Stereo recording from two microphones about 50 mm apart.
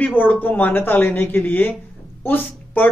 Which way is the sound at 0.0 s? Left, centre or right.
Left.